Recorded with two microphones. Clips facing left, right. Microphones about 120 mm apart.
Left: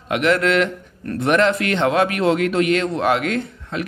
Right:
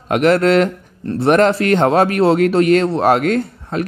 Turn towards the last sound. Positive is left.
turn(degrees=-40)  # may be behind; listen again after turning